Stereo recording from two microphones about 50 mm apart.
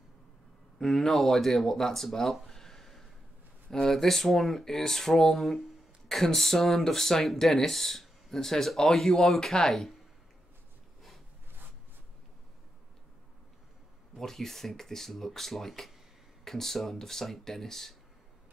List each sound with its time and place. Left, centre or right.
0.7 s speech: centre
14.1 s speech: centre